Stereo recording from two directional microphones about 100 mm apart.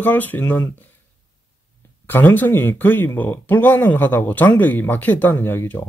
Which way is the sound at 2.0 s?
20° left (ahead or behind).